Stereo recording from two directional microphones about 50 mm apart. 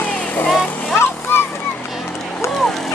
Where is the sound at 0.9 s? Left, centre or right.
Left.